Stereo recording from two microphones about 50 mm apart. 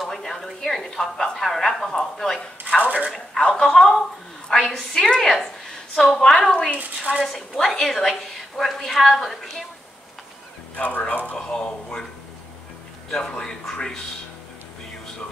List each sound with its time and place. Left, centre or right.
0.0 s a woman's voice: centre
10.8 s speech: left
11.3 s a woman's voice: centre
13.1 s a woman's voice: centre